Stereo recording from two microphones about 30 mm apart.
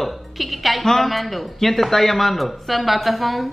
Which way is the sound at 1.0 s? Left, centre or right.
Centre.